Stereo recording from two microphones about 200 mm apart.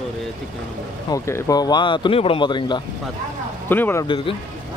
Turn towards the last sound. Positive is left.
turn(degrees=25)  # may be behind; listen again after turning